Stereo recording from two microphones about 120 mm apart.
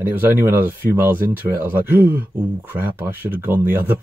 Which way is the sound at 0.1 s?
15° right (ahead or behind).